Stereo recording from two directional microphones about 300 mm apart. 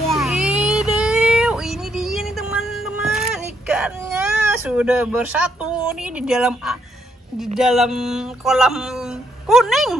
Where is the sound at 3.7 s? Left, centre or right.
Centre.